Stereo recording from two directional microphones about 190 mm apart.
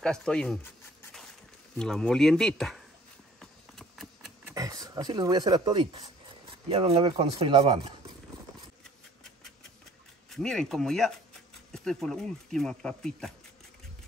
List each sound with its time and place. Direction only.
0.0 s speech: 5° left (ahead or behind)
1.8 s speech: 5° left (ahead or behind)
3.3 s a sound: centre (ahead or behind)
4.6 s speech: 20° right (ahead or behind)
10.3 s speech: 5° left (ahead or behind)